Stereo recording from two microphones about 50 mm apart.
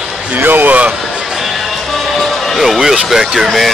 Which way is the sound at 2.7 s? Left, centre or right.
Centre.